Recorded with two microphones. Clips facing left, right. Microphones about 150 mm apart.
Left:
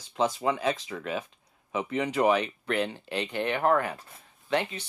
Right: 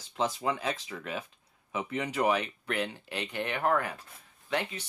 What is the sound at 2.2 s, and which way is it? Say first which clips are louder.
Speech: left 4 dB; 30° left (ahead or behind).